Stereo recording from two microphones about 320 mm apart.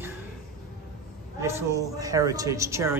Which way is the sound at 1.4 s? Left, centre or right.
Centre.